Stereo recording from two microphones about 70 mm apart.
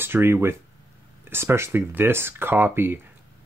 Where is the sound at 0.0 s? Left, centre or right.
Right.